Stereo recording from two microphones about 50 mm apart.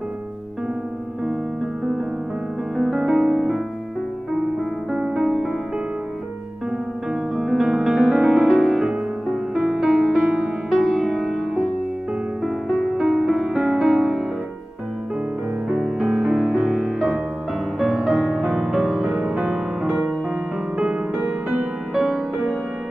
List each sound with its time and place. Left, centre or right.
2.8 s music: centre
4.9 s music: centre
7.1 s music: centre
15.7 s music: centre
21.5 s music: centre